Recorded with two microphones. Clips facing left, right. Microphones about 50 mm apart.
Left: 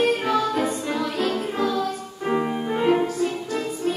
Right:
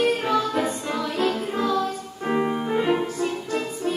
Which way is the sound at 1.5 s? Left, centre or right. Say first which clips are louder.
Even; centre.